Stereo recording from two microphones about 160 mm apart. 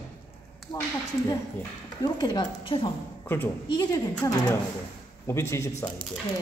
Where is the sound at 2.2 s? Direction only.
30° left (ahead or behind).